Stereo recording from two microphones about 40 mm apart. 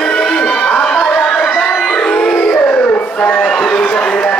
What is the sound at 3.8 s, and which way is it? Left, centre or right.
Run, left.